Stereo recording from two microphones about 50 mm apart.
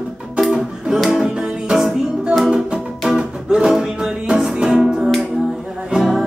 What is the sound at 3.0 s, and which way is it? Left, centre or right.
Music, centre.